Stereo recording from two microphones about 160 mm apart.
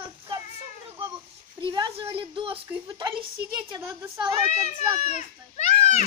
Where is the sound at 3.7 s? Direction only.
15° right (ahead or behind).